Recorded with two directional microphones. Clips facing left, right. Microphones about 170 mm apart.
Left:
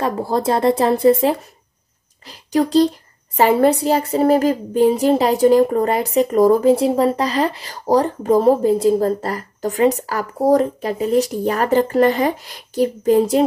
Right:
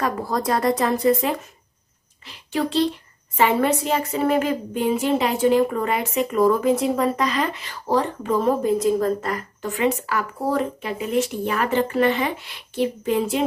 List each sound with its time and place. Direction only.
0.0 s a child's voice: 30° left (ahead or behind)